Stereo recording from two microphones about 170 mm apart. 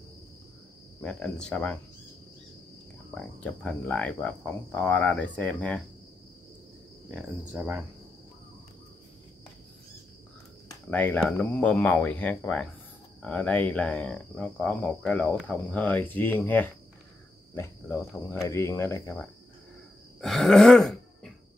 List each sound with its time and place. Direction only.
1.0 s speech: 5° left (ahead or behind)
3.2 s speech: 5° left (ahead or behind)
7.1 s speech: centre (ahead or behind)
10.9 s speech: 10° left (ahead or behind)
20.2 s groan: centre (ahead or behind)